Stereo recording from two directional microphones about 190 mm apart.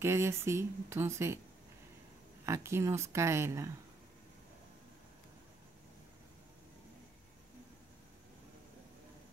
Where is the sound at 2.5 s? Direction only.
15° right (ahead or behind).